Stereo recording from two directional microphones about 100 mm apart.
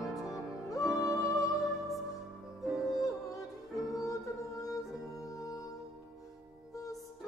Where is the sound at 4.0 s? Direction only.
35° left (ahead or behind).